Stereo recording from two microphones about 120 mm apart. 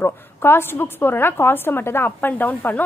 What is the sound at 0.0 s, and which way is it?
A woman's voice, 20° left (ahead or behind).